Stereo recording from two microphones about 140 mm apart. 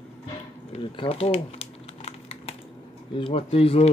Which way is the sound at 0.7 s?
40° left (ahead or behind).